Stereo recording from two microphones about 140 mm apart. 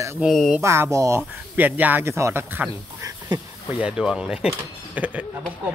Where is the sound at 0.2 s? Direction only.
Centre (ahead or behind).